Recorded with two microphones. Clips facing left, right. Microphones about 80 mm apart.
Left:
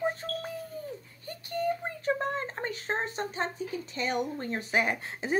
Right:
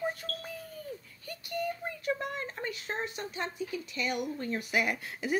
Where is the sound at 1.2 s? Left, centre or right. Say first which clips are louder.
Left 4 dB; left.